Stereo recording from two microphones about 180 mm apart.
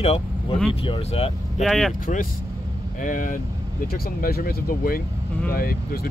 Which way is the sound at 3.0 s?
50° left (ahead or behind).